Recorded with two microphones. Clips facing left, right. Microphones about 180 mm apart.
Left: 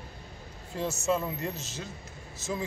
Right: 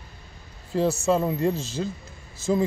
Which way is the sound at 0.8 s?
35° right (ahead or behind).